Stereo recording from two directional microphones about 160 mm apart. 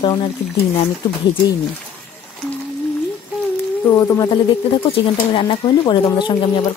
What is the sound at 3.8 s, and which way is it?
Speech, 15° left (ahead or behind).